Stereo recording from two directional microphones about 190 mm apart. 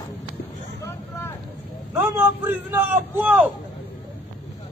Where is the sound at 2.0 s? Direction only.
10° right (ahead or behind).